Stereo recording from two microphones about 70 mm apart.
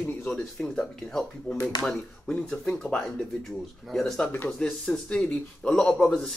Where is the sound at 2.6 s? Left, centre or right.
Centre.